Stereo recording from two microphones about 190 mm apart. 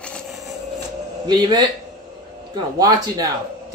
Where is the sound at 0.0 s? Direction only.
5° left (ahead or behind).